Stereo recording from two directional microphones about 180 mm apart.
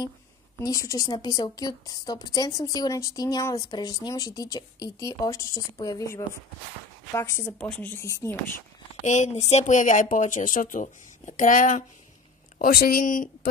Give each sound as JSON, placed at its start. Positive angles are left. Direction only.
{"t": 0.6, "sound": "a woman's voice", "side_deg": 15}
{"t": 9.0, "sound": "a woman's voice", "side_deg": 40}